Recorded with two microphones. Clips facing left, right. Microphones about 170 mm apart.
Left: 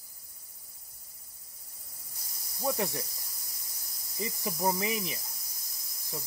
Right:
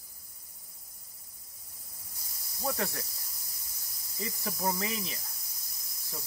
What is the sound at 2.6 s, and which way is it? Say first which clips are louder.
Speech: left 3 dB; 15° left (ahead or behind).